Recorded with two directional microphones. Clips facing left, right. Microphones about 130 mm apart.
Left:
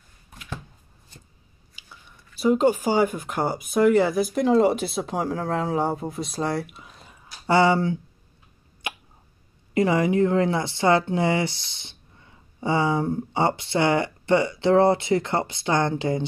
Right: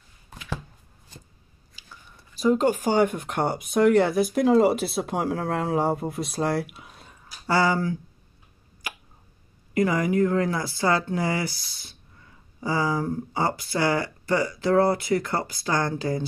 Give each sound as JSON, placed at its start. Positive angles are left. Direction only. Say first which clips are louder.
{"t": 1.9, "sound": "a sound", "louder": "right 1 dB", "side_deg": 5}
{"t": 2.8, "sound": "speech", "louder": "even", "side_deg": 5}
{"t": 7.4, "sound": "speech", "louder": "left 4 dB", "side_deg": 25}
{"t": 8.8, "sound": "hiccup", "louder": "left 4 dB", "side_deg": 25}
{"t": 9.8, "sound": "speech", "louder": "left 2 dB", "side_deg": 25}